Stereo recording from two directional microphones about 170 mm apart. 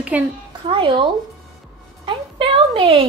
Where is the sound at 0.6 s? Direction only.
30° right (ahead or behind).